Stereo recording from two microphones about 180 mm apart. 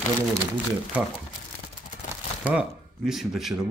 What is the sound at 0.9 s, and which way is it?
Speech, 5° right (ahead or behind).